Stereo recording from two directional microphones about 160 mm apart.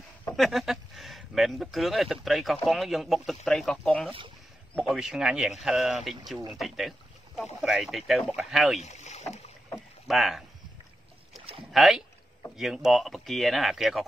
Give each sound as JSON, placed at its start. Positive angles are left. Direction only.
{"t": 0.4, "sound": "speech", "side_deg": 0}
{"t": 8.8, "sound": "rowboat", "side_deg": 45}
{"t": 10.0, "sound": "speech", "side_deg": 0}
{"t": 11.7, "sound": "speech", "side_deg": 0}